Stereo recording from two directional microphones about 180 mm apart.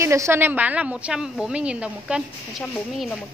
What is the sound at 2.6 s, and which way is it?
Speech, 5° left (ahead or behind).